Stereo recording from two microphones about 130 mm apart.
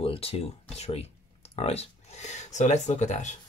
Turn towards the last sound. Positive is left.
turn(degrees=65)  # may be behind; listen again after turning